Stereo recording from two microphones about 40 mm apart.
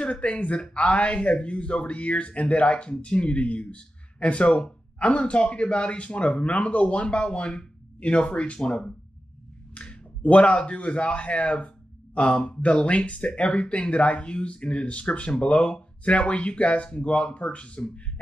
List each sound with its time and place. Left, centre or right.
0.0 s speech: left